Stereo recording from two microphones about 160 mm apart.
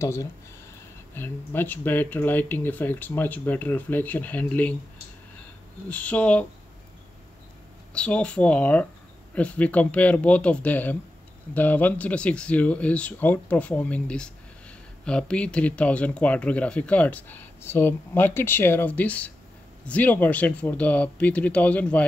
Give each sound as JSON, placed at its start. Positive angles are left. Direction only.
{"t": 0.0, "sound": "speech", "side_deg": 15}
{"t": 5.9, "sound": "speech", "side_deg": 10}
{"t": 7.9, "sound": "speech", "side_deg": 5}